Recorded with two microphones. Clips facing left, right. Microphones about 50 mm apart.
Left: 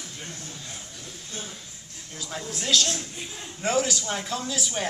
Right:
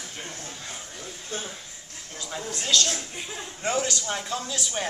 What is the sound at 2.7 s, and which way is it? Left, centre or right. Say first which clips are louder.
Speech: even; centre.